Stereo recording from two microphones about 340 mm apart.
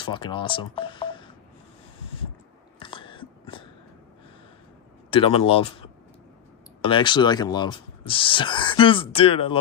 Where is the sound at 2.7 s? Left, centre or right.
Centre.